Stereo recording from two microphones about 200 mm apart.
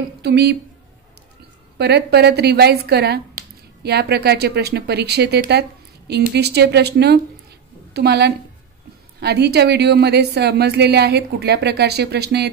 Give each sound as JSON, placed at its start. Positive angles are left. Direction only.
{"t": 0.2, "sound": "a woman's voice", "side_deg": -55}
{"t": 1.8, "sound": "a woman's voice", "side_deg": -55}